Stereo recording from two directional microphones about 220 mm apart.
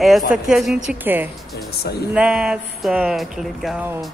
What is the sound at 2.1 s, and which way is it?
Speech, 5° right (ahead or behind).